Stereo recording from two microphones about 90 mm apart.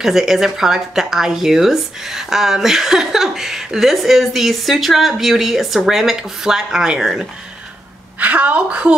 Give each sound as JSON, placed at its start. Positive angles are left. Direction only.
{"t": 0.0, "sound": "speech", "side_deg": -5}
{"t": 8.2, "sound": "a woman's voice", "side_deg": -15}